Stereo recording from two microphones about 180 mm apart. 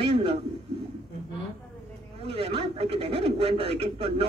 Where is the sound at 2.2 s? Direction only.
30° right (ahead or behind).